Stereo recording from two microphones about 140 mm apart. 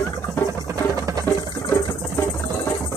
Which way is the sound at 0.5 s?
20° right (ahead or behind).